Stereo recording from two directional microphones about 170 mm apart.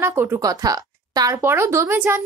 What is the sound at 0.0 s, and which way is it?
A woman's voice, 15° right (ahead or behind).